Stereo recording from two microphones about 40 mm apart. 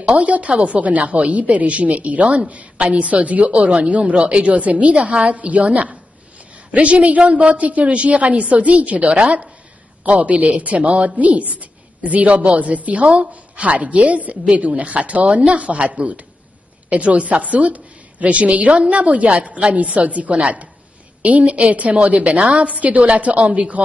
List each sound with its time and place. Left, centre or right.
0.1 s a woman's voice: right